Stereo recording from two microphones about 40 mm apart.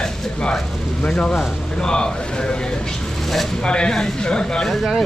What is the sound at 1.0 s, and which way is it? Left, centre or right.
Speech, left.